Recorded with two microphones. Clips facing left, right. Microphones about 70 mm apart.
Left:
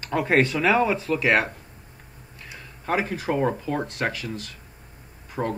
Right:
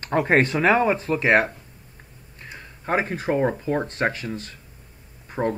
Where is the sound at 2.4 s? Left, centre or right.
Right.